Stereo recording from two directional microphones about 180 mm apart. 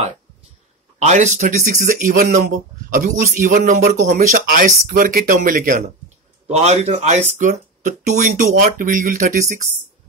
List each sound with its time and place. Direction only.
0.9 s speech: 40° right (ahead or behind)
6.4 s speech: 35° right (ahead or behind)